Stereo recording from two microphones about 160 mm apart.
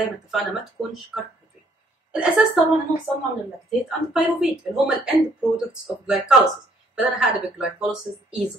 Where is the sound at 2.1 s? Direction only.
5° right (ahead or behind).